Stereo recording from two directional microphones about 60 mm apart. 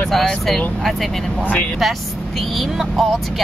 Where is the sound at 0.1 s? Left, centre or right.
Centre.